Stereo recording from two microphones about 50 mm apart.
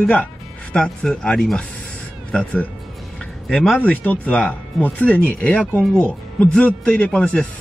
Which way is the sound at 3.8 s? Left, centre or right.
Left.